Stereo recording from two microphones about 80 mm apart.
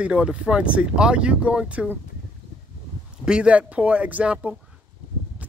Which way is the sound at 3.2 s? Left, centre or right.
Centre.